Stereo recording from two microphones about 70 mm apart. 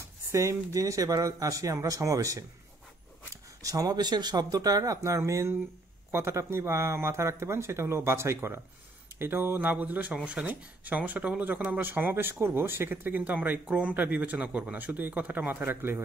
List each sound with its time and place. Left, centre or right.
0.0 s speech: right
3.6 s speech: right; by 10.4 s centre
10.4 s speech: right